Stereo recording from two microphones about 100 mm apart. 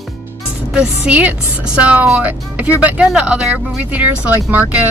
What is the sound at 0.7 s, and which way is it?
Speech, 10° right (ahead or behind).